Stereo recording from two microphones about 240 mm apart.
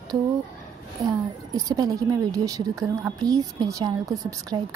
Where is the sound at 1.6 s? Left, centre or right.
Centre.